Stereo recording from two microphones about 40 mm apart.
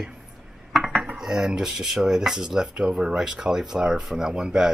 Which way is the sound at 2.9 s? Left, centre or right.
Right.